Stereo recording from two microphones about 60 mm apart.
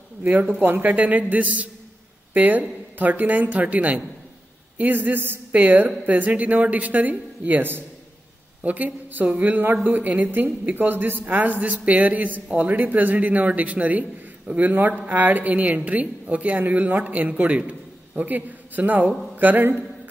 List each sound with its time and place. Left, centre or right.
0.2 s speech: right